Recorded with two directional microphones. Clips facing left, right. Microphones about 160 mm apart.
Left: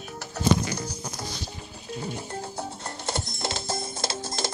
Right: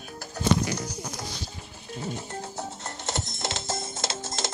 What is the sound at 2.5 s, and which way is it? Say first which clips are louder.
Music: left 1 dB; 20° right (ahead or behind).